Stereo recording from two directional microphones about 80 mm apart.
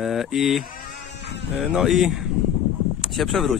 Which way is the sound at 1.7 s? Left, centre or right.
Centre.